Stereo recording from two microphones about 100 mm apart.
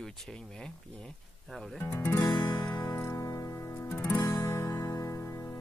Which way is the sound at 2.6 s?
40° left (ahead or behind).